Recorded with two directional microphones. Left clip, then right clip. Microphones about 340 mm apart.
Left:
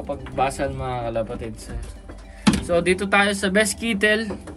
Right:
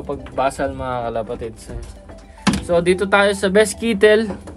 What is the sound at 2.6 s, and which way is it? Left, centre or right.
Speech, right.